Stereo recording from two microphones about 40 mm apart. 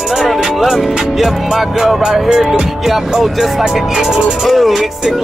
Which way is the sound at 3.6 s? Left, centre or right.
Centre.